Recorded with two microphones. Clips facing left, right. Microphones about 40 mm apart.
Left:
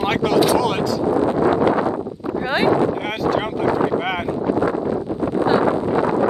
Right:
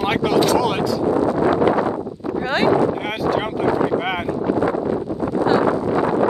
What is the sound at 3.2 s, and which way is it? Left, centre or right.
Speech, centre.